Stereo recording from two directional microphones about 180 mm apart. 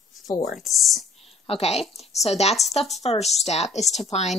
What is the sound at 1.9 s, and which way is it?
A woman's voice, 35° left (ahead or behind).